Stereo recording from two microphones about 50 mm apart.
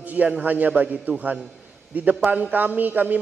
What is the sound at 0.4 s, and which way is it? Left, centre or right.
A man's voice, right.